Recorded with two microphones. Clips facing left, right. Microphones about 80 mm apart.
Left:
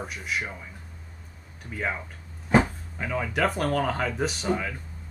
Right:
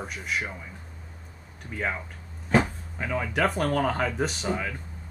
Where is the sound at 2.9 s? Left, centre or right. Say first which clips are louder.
Even; centre.